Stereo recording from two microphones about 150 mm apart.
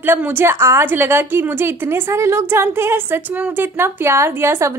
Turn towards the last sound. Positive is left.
turn(degrees=-15)  # may be behind; listen again after turning